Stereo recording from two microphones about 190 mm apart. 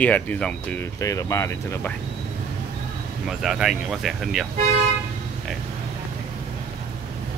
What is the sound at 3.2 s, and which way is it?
Speech, centre (ahead or behind).